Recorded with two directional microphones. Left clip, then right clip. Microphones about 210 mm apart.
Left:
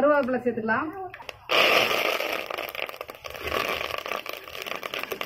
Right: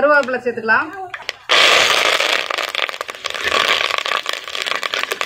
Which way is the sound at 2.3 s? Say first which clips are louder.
Right 12 dB; 15° right (ahead or behind).